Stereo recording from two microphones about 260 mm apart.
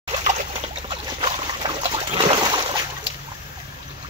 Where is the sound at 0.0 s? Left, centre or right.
Right.